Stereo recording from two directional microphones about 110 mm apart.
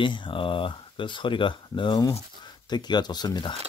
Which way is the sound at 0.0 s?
50° left (ahead or behind).